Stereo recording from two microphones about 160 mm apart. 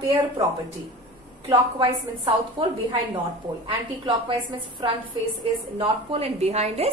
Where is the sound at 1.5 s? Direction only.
30° right (ahead or behind).